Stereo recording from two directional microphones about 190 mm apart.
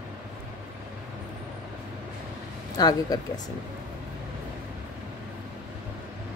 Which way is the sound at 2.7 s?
20° left (ahead or behind).